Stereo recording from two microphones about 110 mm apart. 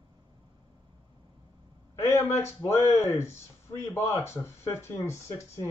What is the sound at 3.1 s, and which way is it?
Speech, 25° left (ahead or behind).